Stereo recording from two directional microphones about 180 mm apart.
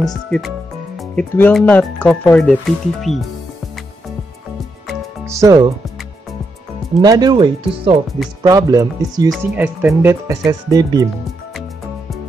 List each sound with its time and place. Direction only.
0.0 s speech: centre (ahead or behind)
5.2 s speech: 20° right (ahead or behind)
7.0 s speech: 20° right (ahead or behind)